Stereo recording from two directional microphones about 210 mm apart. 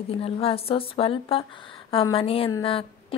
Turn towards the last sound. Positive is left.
turn(degrees=25)  # may be behind; listen again after turning